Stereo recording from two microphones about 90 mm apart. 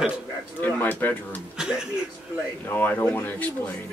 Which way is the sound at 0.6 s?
20° left (ahead or behind).